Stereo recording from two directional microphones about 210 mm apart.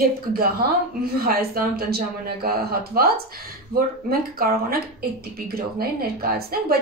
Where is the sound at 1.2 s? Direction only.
45° right (ahead or behind).